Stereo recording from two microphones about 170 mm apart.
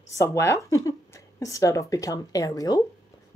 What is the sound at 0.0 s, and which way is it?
Speech, 20° left (ahead or behind).